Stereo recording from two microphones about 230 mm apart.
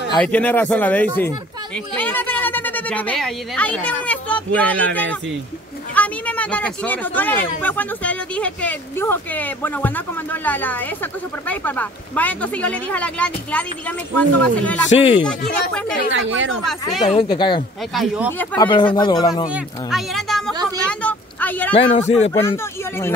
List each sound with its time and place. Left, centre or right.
0.2 s speech: centre
5.9 s speech: centre
14.9 s speech: left
15.2 s speech: centre
16.1 s speech: right
17.0 s speech: left
17.9 s speech: centre
18.6 s speech: left
19.5 s speech: centre